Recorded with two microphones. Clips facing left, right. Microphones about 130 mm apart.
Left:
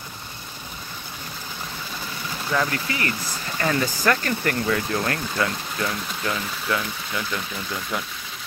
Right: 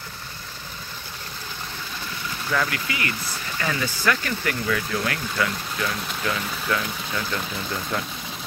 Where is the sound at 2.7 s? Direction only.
35° left (ahead or behind).